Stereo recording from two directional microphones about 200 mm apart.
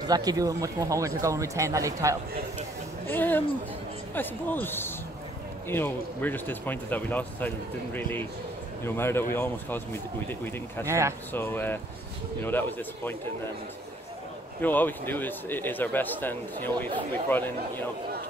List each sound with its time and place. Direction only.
0.0 s speech: 20° right (ahead or behind)
3.1 s speech: 10° left (ahead or behind)
10.9 s speech: 15° right (ahead or behind)
11.3 s speech: 10° left (ahead or behind)
14.6 s speech: 10° left (ahead or behind)